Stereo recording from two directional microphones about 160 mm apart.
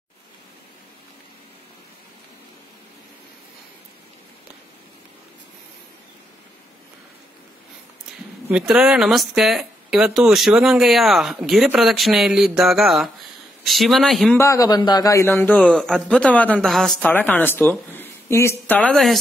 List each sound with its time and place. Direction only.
8.5 s speech: 5° right (ahead or behind)
14.3 s a man's voice: 20° left (ahead or behind)
15.6 s a woman's voice: centre (ahead or behind)